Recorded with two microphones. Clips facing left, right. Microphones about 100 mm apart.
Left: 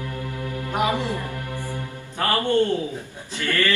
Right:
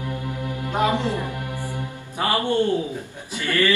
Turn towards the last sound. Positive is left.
turn(degrees=-15)  # may be behind; listen again after turning